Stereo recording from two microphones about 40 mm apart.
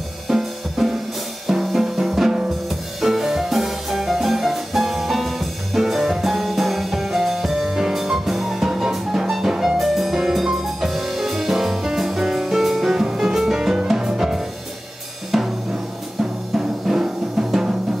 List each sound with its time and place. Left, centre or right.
0.3 s drum kit: centre
1.5 s music: centre
8.6 s music: centre
15.3 s drum: centre
16.2 s music: centre